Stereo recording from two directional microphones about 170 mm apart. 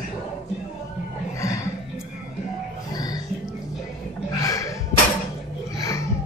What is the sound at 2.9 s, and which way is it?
Music, 20° left (ahead or behind).